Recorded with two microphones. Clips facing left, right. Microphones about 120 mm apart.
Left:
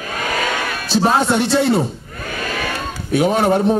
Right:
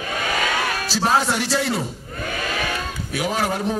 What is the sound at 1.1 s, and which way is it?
Speech, 25° left (ahead or behind).